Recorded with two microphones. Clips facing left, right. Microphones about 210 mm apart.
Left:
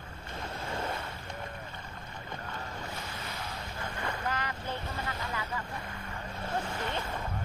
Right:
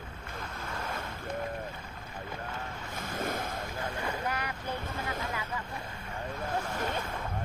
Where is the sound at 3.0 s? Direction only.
50° right (ahead or behind).